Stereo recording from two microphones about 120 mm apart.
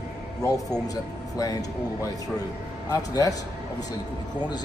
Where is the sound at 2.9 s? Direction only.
30° left (ahead or behind).